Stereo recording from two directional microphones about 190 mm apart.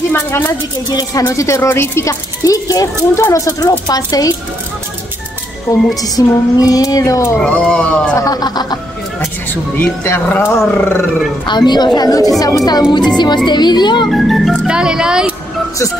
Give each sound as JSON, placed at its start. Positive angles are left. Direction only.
{"t": 0.1, "sound": "speech", "side_deg": 15}
{"t": 5.7, "sound": "a woman's voice", "side_deg": 20}
{"t": 7.3, "sound": "speech", "side_deg": 5}
{"t": 8.3, "sound": "a woman's voice", "side_deg": 20}
{"t": 9.8, "sound": "speech", "side_deg": 10}
{"t": 11.4, "sound": "a woman's voice", "side_deg": 25}
{"t": 14.1, "sound": "speech", "side_deg": 0}